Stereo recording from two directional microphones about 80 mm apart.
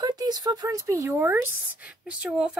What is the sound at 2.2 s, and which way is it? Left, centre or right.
Speech, centre.